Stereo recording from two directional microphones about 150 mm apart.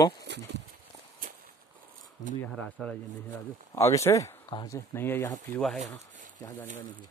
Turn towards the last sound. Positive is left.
turn(degrees=15)  # may be behind; listen again after turning